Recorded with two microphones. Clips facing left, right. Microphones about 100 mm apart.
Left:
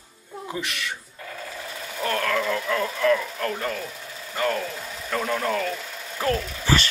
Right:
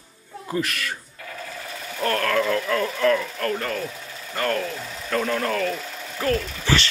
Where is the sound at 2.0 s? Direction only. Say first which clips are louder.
Right 3 dB; 10° left (ahead or behind).